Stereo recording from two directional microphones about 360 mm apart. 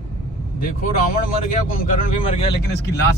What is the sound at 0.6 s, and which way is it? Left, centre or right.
Speech, left.